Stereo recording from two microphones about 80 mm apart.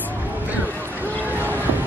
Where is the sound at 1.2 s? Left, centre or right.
Right.